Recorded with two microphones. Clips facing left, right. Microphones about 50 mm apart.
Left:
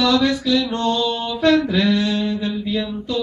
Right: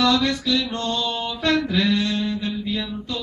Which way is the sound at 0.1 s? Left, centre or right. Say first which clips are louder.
Left 4 dB; centre.